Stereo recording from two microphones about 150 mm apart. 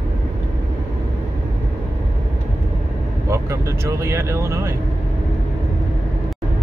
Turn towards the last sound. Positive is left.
turn(degrees=-20)  # may be behind; listen again after turning